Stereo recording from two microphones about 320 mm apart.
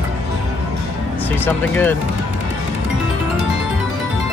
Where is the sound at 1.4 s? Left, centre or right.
Centre.